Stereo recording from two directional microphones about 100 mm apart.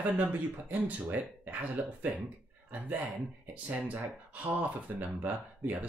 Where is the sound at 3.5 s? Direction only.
15° right (ahead or behind).